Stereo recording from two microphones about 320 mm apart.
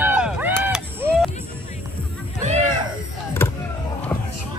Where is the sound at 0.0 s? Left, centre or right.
Centre.